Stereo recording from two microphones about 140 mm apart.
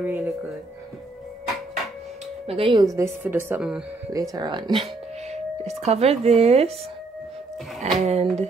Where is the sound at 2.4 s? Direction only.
40° right (ahead or behind).